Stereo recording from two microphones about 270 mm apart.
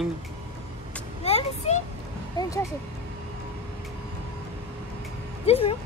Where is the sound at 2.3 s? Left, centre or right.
Centre.